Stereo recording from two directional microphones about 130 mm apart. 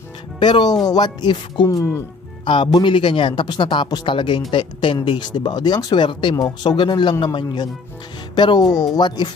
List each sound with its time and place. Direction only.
0.4 s speech: 35° left (ahead or behind)
2.4 s speech: 40° left (ahead or behind)